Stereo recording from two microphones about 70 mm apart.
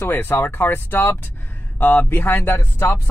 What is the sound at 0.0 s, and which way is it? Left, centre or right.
Speech, left.